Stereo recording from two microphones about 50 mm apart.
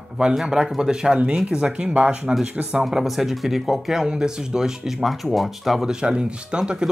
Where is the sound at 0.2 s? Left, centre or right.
Centre.